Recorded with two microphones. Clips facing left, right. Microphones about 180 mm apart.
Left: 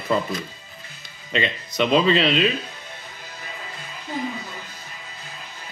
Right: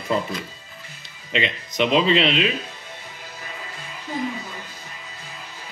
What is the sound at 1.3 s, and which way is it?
Speech, 20° right (ahead or behind).